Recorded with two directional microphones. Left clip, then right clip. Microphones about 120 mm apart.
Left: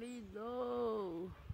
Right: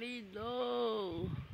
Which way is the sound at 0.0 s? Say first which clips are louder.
Right 4 dB; 25° right (ahead or behind).